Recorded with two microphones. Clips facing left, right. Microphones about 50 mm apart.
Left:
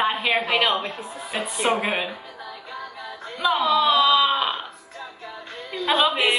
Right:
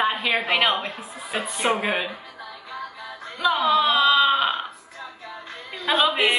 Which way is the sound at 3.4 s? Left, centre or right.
Centre.